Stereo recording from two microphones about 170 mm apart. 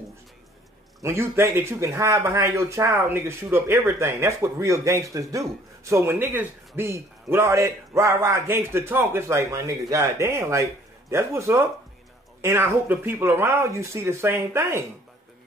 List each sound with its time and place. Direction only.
1.0 s a man's voice: 15° right (ahead or behind)